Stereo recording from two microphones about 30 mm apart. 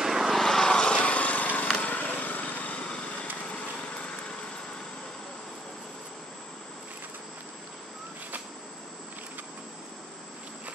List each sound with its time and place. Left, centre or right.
0.0 s vehicle: centre
0.3 s vehicle: centre
0.7 s vehicle: left
0.9 s lawn mower: left
2.0 s lawn mower: left
2.8 s vehicle: left